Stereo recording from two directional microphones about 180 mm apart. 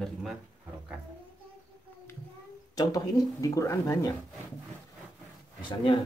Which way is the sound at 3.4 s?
15° left (ahead or behind).